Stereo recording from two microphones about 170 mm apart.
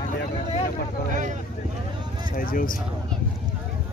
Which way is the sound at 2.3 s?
55° left (ahead or behind).